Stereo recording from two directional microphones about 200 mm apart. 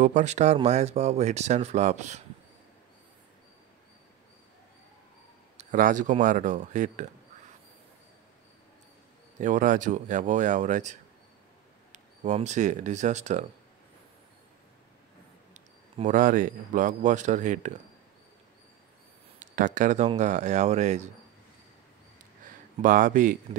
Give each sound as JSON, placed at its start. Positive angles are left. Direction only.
{"t": 0.0, "sound": "speech", "side_deg": -35}
{"t": 5.6, "sound": "speech", "side_deg": -40}
{"t": 9.4, "sound": "speech", "side_deg": -40}
{"t": 15.5, "sound": "a man's voice", "side_deg": -40}
{"t": 19.4, "sound": "speech", "side_deg": -40}
{"t": 22.8, "sound": "speech", "side_deg": -40}